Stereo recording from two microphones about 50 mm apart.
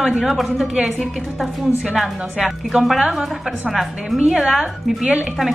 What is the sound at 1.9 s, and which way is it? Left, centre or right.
A woman's voice, centre.